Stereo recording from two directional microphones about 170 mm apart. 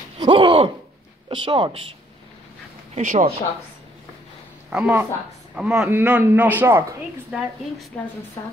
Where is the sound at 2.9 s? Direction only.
50° right (ahead or behind).